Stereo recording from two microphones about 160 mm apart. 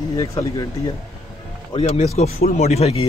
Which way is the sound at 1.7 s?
40° left (ahead or behind).